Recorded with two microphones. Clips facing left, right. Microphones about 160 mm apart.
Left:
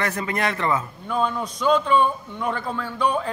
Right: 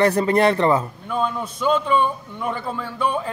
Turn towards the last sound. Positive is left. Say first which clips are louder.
# even
turn(degrees=-5)  # may be behind; listen again after turning